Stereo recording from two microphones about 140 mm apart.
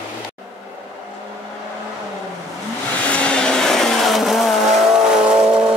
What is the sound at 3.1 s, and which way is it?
Vehicle, 10° left (ahead or behind).